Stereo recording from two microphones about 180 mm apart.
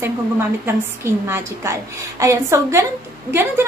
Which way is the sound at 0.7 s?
15° right (ahead or behind).